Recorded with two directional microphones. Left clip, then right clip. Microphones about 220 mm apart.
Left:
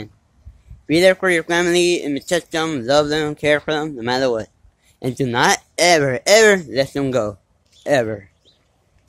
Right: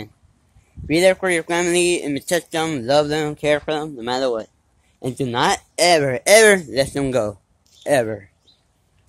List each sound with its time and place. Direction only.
0.8 s speech: 10° left (ahead or behind)